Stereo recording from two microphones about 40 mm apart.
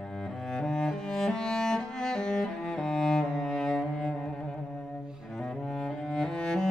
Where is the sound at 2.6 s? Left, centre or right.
Centre.